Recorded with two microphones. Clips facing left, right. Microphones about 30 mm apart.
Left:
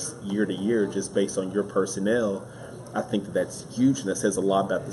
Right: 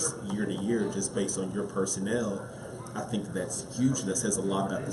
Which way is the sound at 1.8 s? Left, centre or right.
Centre.